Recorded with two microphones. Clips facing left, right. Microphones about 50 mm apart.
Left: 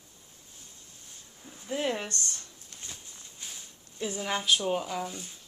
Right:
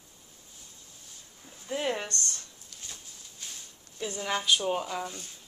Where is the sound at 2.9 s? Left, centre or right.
Centre.